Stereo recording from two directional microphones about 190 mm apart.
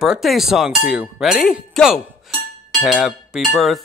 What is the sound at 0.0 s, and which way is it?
Cowbell, centre (ahead or behind).